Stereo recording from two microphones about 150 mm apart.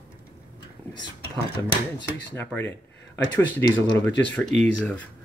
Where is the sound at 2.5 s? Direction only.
10° right (ahead or behind).